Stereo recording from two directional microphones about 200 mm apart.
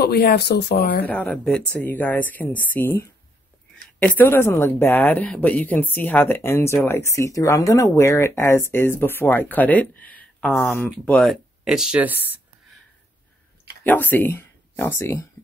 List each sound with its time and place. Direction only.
0.0 s speech: 50° left (ahead or behind)
1.0 s a woman's voice: 10° left (ahead or behind); by 12.4 s 10° right (ahead or behind)
13.8 s speech: 10° left (ahead or behind)